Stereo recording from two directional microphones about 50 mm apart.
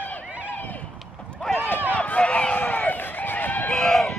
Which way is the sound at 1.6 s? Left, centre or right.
Left.